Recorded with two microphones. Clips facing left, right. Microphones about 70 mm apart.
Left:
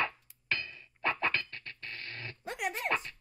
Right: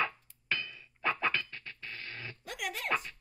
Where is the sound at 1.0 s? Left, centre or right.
Centre.